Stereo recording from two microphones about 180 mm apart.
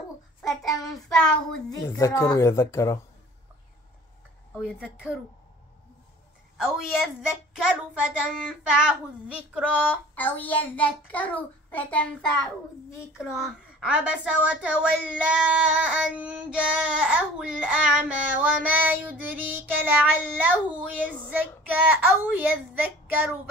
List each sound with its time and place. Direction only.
0.4 s a child's voice: centre (ahead or behind)
2.0 s a child's voice: 15° left (ahead or behind)
4.6 s a woman's voice: 5° right (ahead or behind)
6.6 s a woman's voice: 5° right (ahead or behind)
10.1 s a child's voice: 10° left (ahead or behind); by 23.1 s 10° right (ahead or behind)